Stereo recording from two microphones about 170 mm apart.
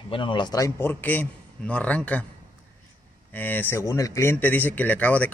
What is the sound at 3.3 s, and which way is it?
Speech, 10° left (ahead or behind).